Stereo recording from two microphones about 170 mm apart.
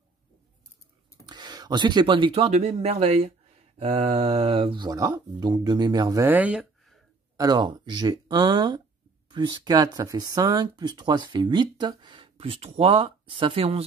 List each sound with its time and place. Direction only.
1.2 s speech: 25° right (ahead or behind); by 7.0 s 5° right (ahead or behind)
7.3 s speech: 25° right (ahead or behind)